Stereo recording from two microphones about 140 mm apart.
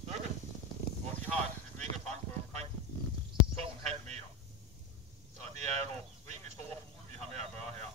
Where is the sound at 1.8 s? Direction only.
55° right (ahead or behind).